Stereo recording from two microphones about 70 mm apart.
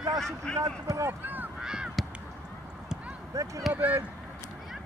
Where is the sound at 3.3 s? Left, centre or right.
Right.